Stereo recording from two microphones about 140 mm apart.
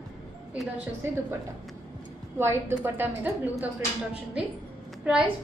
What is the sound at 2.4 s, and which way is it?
A woman's voice, 15° right (ahead or behind).